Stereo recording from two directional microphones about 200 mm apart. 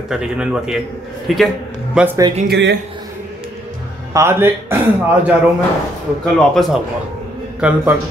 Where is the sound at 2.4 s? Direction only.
55° right (ahead or behind).